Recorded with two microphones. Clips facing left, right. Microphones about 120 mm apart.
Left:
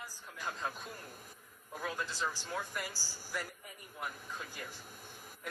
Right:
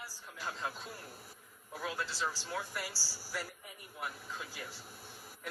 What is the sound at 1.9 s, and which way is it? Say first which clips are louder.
A man's voice: right 1 dB; 15° left (ahead or behind).